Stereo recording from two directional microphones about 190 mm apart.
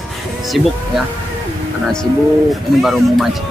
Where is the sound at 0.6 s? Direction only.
Centre (ahead or behind).